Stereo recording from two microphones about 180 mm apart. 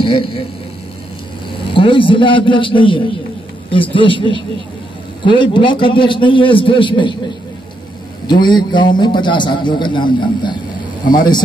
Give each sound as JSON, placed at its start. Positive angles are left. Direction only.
{"t": 0.0, "sound": "a man's voice", "side_deg": 30}
{"t": 1.7, "sound": "a man's voice", "side_deg": 30}
{"t": 8.3, "sound": "a man's voice", "side_deg": 25}